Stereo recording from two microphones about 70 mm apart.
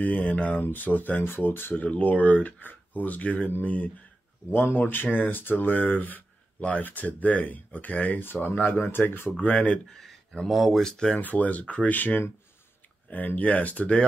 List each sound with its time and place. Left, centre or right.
0.0 s speech: left
4.5 s speech: left
9.4 s speech: centre
9.9 s speech: centre
11.1 s speech: left